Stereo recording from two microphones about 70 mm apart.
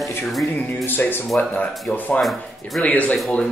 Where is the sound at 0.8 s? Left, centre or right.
Left.